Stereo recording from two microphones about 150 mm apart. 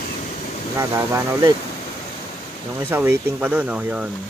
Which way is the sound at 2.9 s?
15° right (ahead or behind).